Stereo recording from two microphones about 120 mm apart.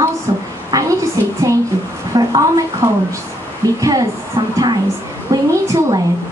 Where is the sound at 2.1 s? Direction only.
30° right (ahead or behind).